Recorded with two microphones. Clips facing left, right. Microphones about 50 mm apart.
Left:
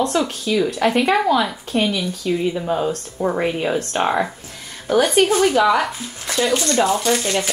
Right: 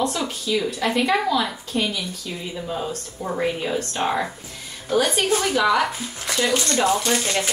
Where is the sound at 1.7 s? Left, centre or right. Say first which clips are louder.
Left 5 dB; left.